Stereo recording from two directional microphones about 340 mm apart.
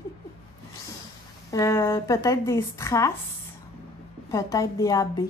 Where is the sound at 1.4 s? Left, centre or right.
Centre.